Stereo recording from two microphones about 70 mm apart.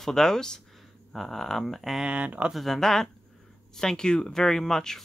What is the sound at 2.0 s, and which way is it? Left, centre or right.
Speech, centre.